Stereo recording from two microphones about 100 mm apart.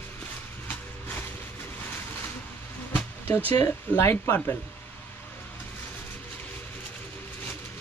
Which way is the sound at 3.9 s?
20° left (ahead or behind).